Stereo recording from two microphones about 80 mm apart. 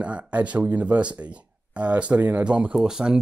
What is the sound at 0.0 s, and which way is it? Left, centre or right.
Speech, centre.